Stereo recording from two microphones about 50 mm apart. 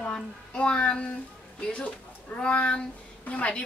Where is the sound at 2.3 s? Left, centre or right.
Left.